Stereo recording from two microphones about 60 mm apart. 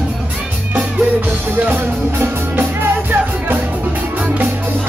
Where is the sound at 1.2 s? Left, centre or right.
Right.